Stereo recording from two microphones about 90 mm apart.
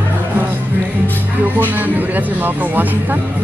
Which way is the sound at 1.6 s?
20° right (ahead or behind).